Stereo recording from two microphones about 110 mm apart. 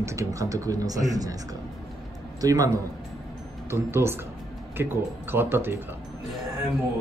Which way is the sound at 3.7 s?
20° right (ahead or behind).